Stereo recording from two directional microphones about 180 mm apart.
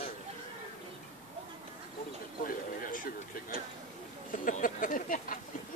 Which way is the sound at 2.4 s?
50° left (ahead or behind).